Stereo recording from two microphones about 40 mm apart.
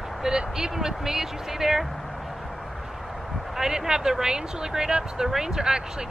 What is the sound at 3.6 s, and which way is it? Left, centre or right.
Speech, centre.